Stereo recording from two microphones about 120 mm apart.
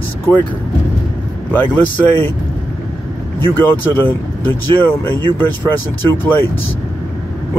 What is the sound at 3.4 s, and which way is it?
Speech, 20° left (ahead or behind).